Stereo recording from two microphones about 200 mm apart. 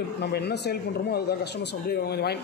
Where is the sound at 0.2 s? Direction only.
55° left (ahead or behind).